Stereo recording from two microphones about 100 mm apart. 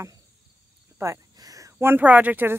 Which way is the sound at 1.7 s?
20° right (ahead or behind).